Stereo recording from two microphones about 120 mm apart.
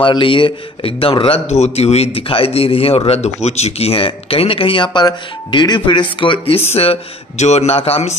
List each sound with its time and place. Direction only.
0.0 s a man's voice: 45° left (ahead or behind); by 8.2 s 60° left (ahead or behind)